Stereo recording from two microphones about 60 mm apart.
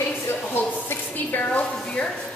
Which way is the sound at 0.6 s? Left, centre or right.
Left.